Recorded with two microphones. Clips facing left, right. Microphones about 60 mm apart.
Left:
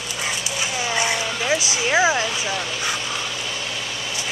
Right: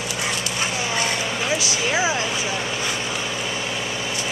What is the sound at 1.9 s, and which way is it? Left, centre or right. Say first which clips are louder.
Speech: left 5 dB; centre.